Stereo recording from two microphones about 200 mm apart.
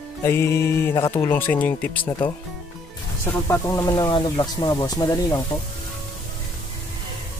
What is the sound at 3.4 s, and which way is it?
Speech, 15° left (ahead or behind).